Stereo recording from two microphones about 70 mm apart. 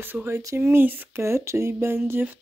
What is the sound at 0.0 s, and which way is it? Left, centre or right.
Speech, right.